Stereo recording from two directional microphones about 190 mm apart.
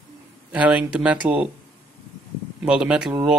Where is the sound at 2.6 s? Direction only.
5° right (ahead or behind).